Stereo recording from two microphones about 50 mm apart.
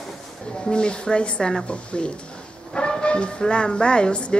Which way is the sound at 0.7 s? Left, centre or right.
Centre.